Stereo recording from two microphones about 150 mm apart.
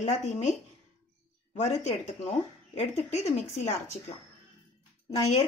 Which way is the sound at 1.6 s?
50° left (ahead or behind).